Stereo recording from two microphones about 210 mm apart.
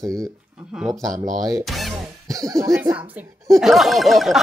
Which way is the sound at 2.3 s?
15° right (ahead or behind).